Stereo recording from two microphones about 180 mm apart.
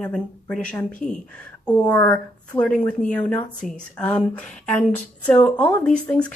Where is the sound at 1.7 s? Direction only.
20° left (ahead or behind).